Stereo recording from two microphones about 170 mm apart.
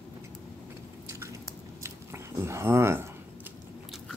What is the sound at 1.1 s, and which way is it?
Squish, 15° right (ahead or behind).